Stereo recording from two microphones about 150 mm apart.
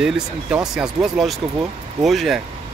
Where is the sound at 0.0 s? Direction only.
5° right (ahead or behind).